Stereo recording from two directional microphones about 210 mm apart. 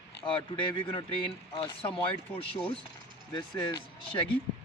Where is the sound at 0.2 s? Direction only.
25° left (ahead or behind).